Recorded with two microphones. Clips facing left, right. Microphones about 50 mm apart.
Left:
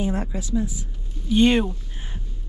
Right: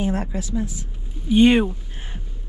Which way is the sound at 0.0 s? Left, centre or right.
Right.